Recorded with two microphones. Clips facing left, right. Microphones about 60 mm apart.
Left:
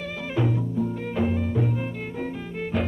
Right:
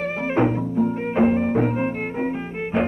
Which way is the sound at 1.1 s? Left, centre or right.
Right.